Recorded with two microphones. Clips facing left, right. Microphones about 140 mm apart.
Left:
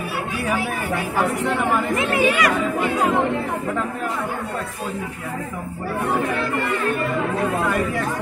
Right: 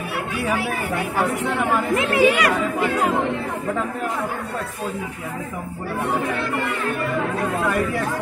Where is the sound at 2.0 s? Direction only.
90° right.